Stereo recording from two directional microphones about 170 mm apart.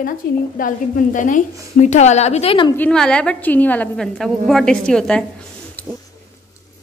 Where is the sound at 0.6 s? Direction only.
50° left (ahead or behind); by 2.7 s 35° left (ahead or behind).